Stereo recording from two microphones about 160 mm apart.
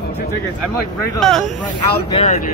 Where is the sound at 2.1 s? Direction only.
45° left (ahead or behind).